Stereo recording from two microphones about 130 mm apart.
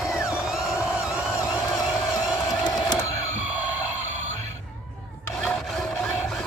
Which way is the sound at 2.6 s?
30° left (ahead or behind).